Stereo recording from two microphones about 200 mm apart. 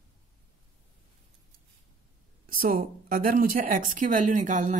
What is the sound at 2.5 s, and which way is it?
Speech, 45° right (ahead or behind).